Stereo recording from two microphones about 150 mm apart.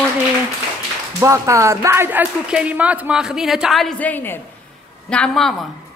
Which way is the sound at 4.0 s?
10° left (ahead or behind).